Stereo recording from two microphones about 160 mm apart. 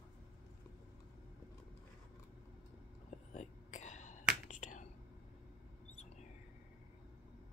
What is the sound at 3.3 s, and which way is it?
Whispering, 50° left (ahead or behind).